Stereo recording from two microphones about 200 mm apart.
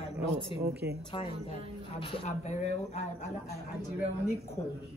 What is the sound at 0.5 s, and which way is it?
Speech, 30° left (ahead or behind).